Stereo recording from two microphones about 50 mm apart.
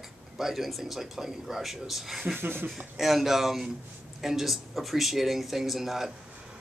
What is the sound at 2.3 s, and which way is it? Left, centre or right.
Speech, right.